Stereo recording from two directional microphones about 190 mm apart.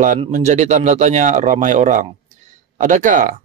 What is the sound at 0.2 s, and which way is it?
Speech, 35° right (ahead or behind).